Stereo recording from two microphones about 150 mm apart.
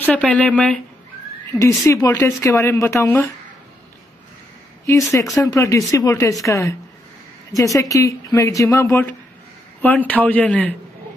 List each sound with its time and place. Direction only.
0.1 s a man's voice: 10° left (ahead or behind)
1.5 s speech: 20° left (ahead or behind)
5.4 s a man's voice: 20° left (ahead or behind)